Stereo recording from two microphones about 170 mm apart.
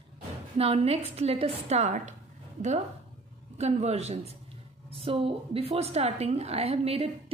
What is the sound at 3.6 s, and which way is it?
A woman's voice, 40° right (ahead or behind).